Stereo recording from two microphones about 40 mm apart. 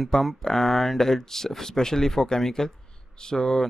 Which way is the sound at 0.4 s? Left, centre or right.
Centre.